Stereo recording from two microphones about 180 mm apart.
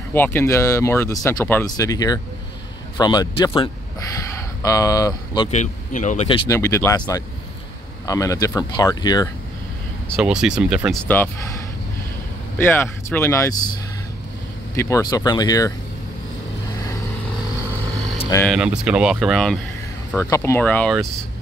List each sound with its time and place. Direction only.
0.1 s speech: 10° left (ahead or behind)
5.5 s speech: 40° left (ahead or behind)
6.5 s speech: 15° left (ahead or behind)
10.1 s speech: 5° right (ahead or behind)
12.5 s speech: 15° left (ahead or behind)
14.8 s speech: 20° left (ahead or behind)
18.2 s a sound: 10° left (ahead or behind)
18.5 s speech: 5° right (ahead or behind)
20.2 s speech: 15° left (ahead or behind)